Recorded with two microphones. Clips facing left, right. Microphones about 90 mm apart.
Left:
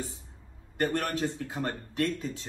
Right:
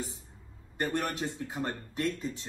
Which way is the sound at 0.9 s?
10° right (ahead or behind).